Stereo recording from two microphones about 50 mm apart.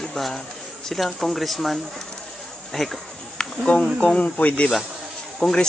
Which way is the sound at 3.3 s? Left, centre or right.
Left.